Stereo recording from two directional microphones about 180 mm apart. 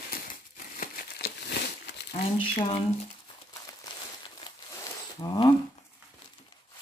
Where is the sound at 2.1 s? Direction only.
30° left (ahead or behind).